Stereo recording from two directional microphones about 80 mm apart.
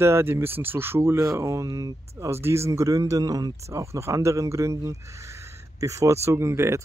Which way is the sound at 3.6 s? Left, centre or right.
Right.